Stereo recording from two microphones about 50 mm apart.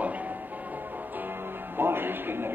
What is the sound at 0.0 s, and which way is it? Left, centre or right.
Music, right.